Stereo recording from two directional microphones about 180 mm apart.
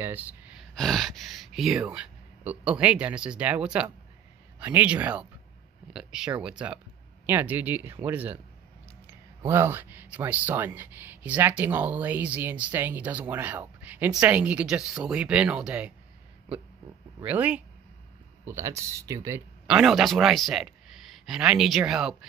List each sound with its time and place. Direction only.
0.0 s gasp: 10° right (ahead or behind)
0.7 s speech: centre (ahead or behind)
17.2 s speech: 10° right (ahead or behind)
19.7 s speech: centre (ahead or behind)